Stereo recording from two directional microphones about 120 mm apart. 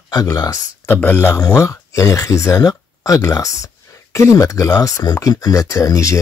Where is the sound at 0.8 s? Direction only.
15° left (ahead or behind).